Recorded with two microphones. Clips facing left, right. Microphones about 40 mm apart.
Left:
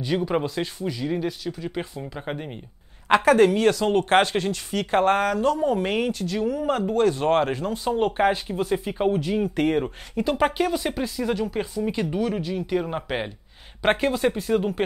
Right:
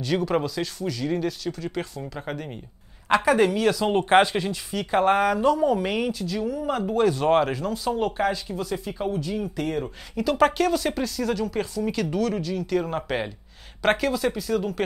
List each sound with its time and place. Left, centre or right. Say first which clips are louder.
0.0 s speech: even; centre
3.3 s speech: left 4 dB; left
4.1 s speech: right 4 dB; centre
4.6 s speech: left 1 dB; centre
5.0 s speech: right 3 dB; centre
5.8 s speech: left 1 dB; left
6.7 s speech: even; centre
7.3 s speech: even; centre; by 9.9 s left
10.1 s speech: right 2 dB; left
13.9 s speech: left 2 dB; left